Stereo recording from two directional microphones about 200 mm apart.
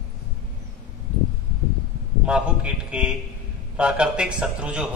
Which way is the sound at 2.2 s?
5° right (ahead or behind).